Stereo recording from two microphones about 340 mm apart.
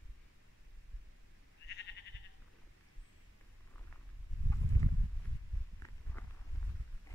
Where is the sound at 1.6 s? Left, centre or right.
Left.